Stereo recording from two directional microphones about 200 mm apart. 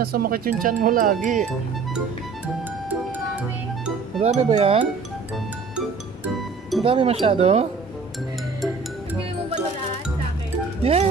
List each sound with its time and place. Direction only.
0.0 s speech: 50° right (ahead or behind)
4.2 s speech: 30° right (ahead or behind)
5.8 s music: 5° right (ahead or behind)
6.8 s speech: 25° right (ahead or behind)
10.8 s speech: 30° right (ahead or behind)